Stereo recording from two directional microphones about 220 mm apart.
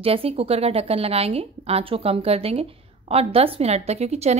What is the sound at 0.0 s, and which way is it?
A woman's voice, 25° right (ahead or behind).